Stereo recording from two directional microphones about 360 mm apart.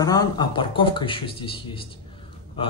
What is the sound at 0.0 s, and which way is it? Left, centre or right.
Speech, centre.